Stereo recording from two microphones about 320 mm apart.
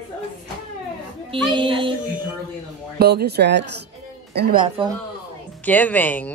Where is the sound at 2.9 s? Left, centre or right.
Right.